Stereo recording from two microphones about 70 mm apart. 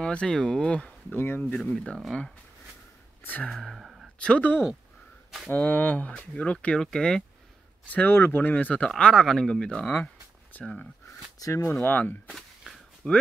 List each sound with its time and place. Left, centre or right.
0.0 s speech: centre
1.1 s speech: left
1.6 s speech: centre
3.4 s a sound: centre
3.8 s a sound: centre
4.2 s speech: centre
7.8 s speech: left
11.3 s speech: left
11.8 s speech: left